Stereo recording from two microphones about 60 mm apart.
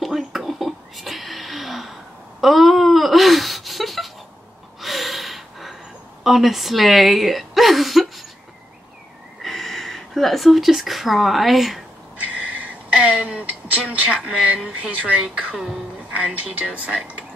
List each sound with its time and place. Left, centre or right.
0.0 s a sound: centre
4.7 s gasp: centre
6.2 s a woman's voice: centre
9.4 s speech: centre
12.3 s a sound: centre
13.5 s speech: right